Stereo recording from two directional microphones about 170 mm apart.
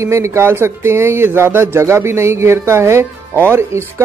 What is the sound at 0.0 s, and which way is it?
Speech, 15° right (ahead or behind).